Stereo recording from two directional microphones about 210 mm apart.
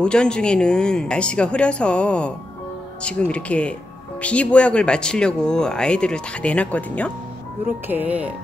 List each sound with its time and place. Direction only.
0.0 s speech: 5° left (ahead or behind)
7.9 s speech: 10° right (ahead or behind)